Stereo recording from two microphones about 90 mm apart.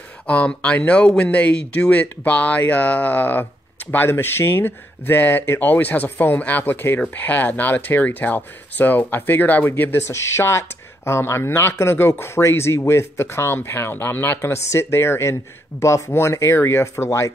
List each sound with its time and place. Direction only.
0.3 s speech: 15° left (ahead or behind)